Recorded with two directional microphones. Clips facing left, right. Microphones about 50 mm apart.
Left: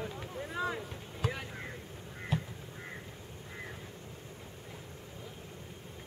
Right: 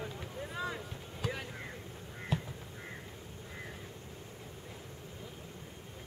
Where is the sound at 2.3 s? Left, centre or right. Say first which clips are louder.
Left 1 dB; centre.